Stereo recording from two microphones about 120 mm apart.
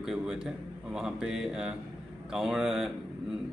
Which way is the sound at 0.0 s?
5° right (ahead or behind).